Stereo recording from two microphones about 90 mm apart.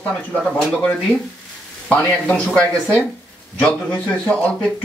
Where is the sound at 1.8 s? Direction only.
15° left (ahead or behind).